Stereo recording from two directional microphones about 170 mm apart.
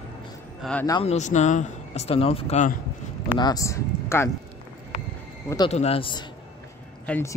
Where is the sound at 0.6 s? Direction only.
5° left (ahead or behind).